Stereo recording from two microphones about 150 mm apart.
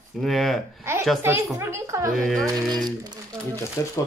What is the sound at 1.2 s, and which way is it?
Speech, 15° right (ahead or behind).